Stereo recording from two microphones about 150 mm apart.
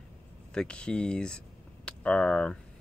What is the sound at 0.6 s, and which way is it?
Speech, 5° left (ahead or behind).